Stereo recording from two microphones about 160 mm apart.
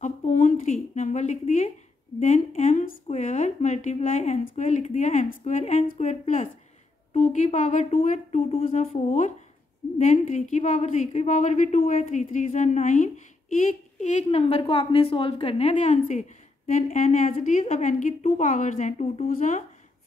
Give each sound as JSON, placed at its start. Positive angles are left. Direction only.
{"t": 0.0, "sound": "a woman's voice", "side_deg": 50}
{"t": 8.6, "sound": "a woman's voice", "side_deg": 55}